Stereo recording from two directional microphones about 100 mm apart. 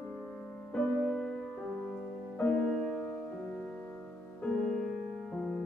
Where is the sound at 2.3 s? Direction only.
5° left (ahead or behind).